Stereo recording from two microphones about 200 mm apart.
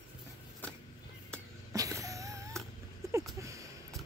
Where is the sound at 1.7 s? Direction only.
15° right (ahead or behind).